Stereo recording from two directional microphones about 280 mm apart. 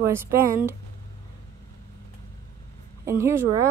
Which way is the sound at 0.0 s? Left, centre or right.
Centre.